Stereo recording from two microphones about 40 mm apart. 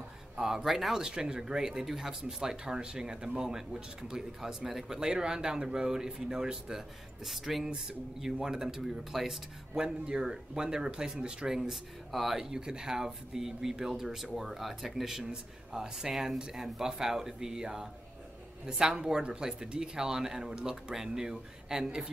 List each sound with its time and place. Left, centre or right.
0.4 s speech: centre
0.7 s speech: centre
1.0 s speech: centre
2.2 s speech: right
7.2 s speech: centre
9.8 s speech: centre
11.7 s speech: centre